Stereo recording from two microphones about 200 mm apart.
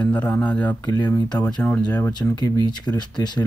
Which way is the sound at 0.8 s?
20° left (ahead or behind).